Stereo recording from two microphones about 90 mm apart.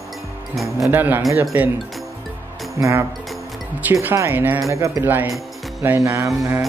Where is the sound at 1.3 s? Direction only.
35° right (ahead or behind).